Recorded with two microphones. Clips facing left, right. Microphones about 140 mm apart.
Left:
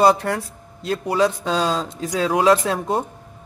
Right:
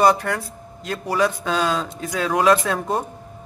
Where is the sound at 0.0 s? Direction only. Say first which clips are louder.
Left 1 dB; 30° left (ahead or behind).